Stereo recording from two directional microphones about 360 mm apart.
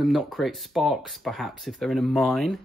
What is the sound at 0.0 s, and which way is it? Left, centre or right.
Speech, centre.